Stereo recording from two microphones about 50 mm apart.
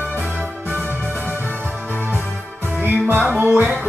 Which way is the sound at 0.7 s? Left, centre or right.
Right.